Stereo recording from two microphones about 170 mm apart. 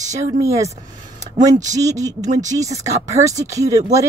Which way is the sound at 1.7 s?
20° right (ahead or behind).